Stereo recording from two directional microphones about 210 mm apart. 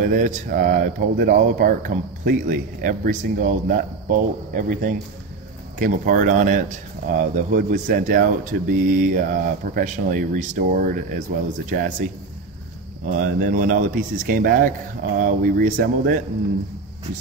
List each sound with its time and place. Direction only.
0.0 s speech: 40° right (ahead or behind)
13.0 s speech: 40° right (ahead or behind)